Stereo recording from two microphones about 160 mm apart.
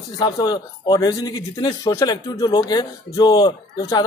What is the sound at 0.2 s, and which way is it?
Speech, 25° left (ahead or behind).